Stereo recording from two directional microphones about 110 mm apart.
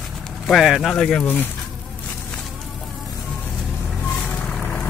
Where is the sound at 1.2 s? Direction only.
15° left (ahead or behind).